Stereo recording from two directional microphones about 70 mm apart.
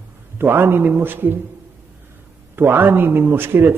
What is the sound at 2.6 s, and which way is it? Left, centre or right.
Speech, right.